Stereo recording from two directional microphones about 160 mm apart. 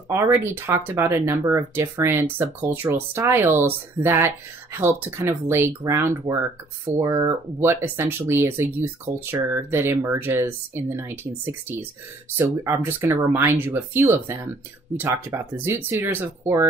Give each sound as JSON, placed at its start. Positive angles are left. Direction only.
{"t": 0.1, "sound": "speech", "side_deg": -15}